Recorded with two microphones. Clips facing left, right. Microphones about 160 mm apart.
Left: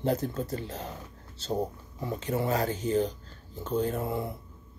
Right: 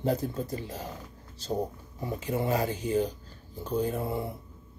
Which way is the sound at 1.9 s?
10° right (ahead or behind).